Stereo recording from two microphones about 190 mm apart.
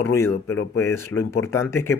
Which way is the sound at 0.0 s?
15° left (ahead or behind).